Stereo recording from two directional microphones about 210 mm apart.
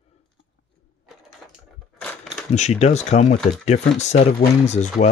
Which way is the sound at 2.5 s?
35° left (ahead or behind).